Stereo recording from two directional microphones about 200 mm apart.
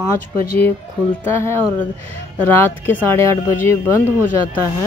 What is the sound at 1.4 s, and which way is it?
Speech, 10° left (ahead or behind).